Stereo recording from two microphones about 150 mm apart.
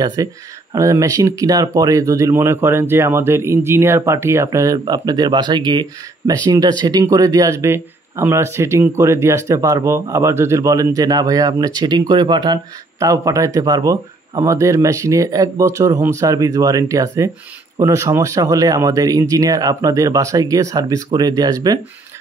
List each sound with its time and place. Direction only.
0.0 s speech: 25° right (ahead or behind)